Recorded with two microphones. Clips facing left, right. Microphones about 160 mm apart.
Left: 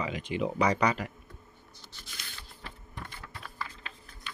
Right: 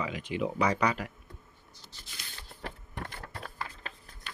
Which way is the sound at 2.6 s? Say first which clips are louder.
Right 5 dB; 55° right (ahead or behind).